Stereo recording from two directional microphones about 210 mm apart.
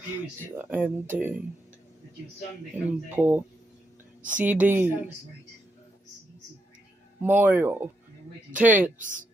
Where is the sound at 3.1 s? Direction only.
10° right (ahead or behind).